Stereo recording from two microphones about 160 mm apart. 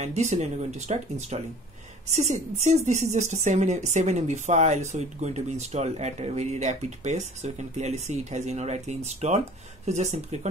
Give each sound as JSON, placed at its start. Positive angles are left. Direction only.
{"t": 0.0, "sound": "a woman's voice", "side_deg": -45}